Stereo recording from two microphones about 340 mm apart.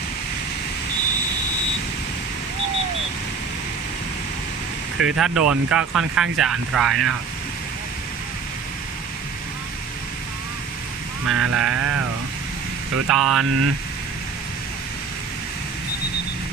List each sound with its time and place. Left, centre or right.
5.0 s speech: centre
11.3 s speech: right
13.1 s speech: centre
13.4 s speech: right